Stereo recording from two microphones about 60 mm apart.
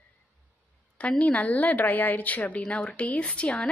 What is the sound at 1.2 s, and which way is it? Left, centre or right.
A woman's voice, left.